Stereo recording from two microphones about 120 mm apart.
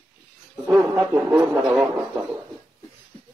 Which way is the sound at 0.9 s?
15° right (ahead or behind).